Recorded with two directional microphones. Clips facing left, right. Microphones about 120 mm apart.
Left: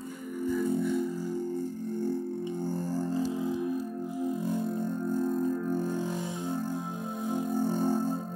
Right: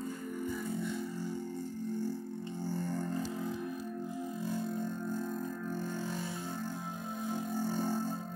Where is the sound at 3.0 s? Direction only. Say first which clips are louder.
Left 7 dB; 25° left (ahead or behind).